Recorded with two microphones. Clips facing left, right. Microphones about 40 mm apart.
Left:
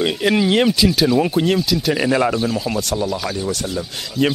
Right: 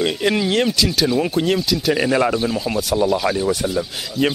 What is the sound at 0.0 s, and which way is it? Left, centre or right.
Speech, centre.